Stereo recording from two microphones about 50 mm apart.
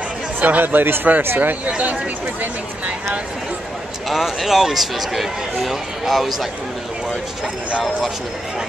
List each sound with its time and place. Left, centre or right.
0.4 s speech: right
1.7 s speech: right
4.1 s speech: centre